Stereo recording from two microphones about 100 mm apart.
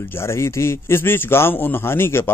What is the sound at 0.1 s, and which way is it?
A man's voice, 25° left (ahead or behind).